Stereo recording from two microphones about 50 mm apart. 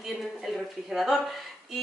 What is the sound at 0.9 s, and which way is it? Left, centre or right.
Speech, centre.